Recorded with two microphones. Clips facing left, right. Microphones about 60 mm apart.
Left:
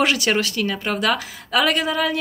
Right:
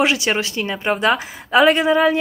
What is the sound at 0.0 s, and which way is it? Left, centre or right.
A woman's voice, centre.